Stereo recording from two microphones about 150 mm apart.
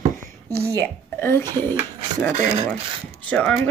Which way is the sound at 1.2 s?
15° left (ahead or behind).